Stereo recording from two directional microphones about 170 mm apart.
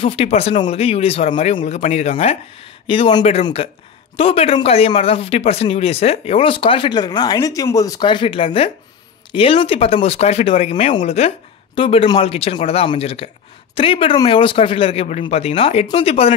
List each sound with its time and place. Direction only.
0.0 s speech: 35° left (ahead or behind)